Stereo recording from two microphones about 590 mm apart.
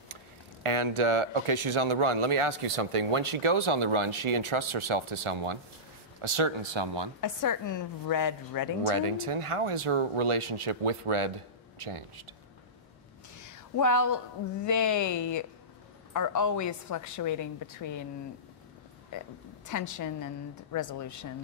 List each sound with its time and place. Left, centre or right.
0.7 s speech: right
7.2 s speech: left
8.8 s speech: right
13.4 s a woman's voice: left
19.1 s a woman's voice: left